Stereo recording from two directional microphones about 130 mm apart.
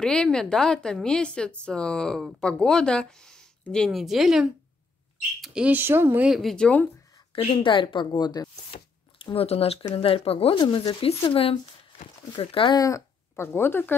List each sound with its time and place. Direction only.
0.0 s speech: 5° left (ahead or behind)
7.3 s speech: 40° left (ahead or behind)
12.0 s speech: 75° left (ahead or behind)
12.4 s speech: 45° left (ahead or behind)
12.7 s speech: 25° left (ahead or behind)